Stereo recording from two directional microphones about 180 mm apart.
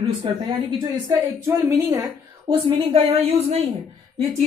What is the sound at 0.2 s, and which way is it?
Speech, 25° right (ahead or behind).